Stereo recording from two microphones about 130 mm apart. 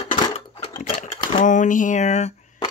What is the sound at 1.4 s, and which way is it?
Speech, 85° left.